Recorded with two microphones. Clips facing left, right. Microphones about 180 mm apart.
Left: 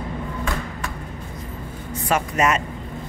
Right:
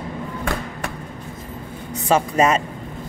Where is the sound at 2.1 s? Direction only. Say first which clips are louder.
Right 4 dB; 30° right (ahead or behind).